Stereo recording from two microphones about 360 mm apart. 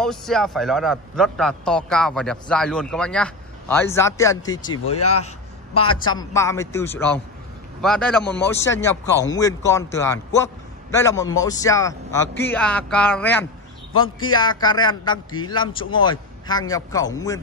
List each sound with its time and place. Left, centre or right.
0.0 s a man's voice: centre
4.8 s speech: left
5.8 s a man's voice: centre
14.6 s a man's voice: centre